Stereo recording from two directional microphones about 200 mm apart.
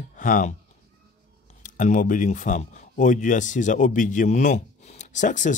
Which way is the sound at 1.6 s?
40° left (ahead or behind).